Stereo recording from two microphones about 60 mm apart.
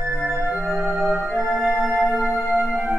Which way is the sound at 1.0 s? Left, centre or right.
Centre.